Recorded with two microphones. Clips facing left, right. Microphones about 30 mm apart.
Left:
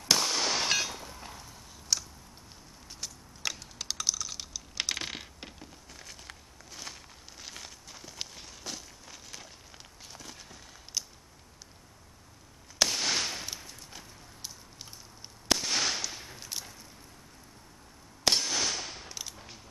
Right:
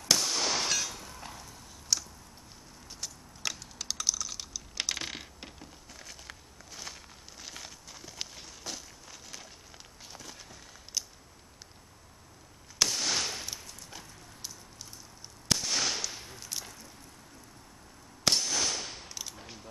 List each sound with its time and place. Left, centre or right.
0.0 s fireworks: centre
0.7 s vehicle: centre
0.9 s a sound: centre
3.0 s computer keyboard: centre
10.1 s a sound: centre
12.7 s firecracker: centre
15.4 s fireworks: centre
18.2 s cap gun: centre